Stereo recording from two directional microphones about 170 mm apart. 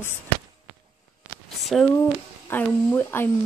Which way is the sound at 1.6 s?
Centre (ahead or behind).